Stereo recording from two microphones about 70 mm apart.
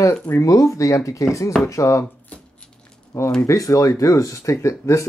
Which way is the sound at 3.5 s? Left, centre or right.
Left.